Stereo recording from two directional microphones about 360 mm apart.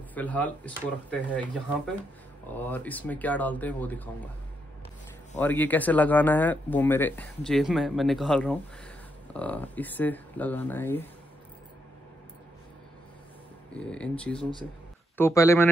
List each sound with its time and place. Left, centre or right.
0.1 s speech: centre
2.5 s speech: centre
5.4 s speech: centre
13.7 s speech: centre